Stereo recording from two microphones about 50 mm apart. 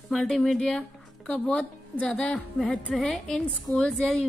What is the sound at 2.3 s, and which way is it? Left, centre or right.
A woman's voice, centre.